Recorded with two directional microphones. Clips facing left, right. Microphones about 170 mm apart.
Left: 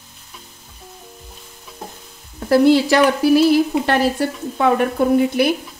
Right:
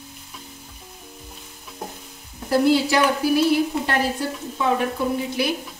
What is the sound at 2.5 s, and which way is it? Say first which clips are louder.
Speech: left 5 dB; 90° left.